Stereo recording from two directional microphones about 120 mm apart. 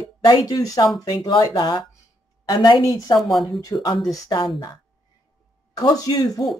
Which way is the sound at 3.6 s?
30° left (ahead or behind).